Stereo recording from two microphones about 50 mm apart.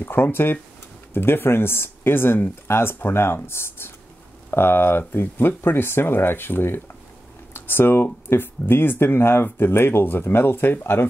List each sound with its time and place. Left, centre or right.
0.0 s speech: left